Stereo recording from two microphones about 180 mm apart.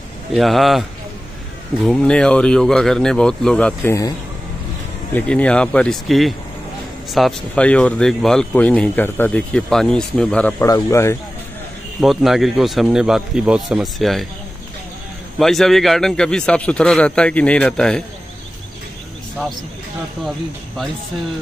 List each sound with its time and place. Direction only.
0.3 s speech: centre (ahead or behind)
5.1 s speech: 5° left (ahead or behind)
12.0 s speech: centre (ahead or behind)
15.3 s speech: centre (ahead or behind)
20.2 s speech: centre (ahead or behind)